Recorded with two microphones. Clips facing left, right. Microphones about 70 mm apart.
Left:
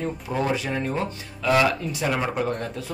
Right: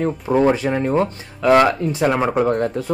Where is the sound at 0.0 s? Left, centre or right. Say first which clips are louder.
Right 10 dB; right.